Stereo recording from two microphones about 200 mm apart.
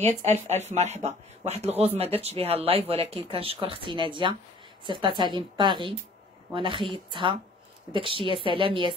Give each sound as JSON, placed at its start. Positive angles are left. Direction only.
{"t": 0.0, "sound": "speech", "side_deg": -35}